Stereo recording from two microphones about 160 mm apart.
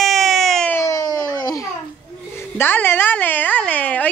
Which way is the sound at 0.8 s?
20° left (ahead or behind).